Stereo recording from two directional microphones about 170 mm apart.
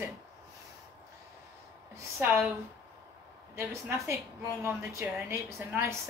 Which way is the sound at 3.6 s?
15° right (ahead or behind).